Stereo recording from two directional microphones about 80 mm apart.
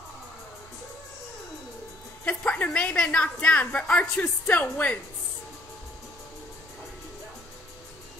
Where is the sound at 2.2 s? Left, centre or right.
Centre.